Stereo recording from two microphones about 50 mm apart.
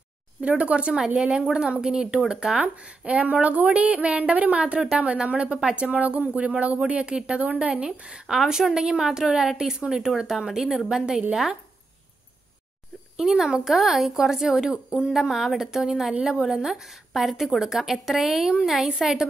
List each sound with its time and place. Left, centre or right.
0.4 s speech: right
0.9 s a woman's voice: centre
5.9 s a woman's voice: right; by 11.2 s centre
13.2 s a woman's voice: centre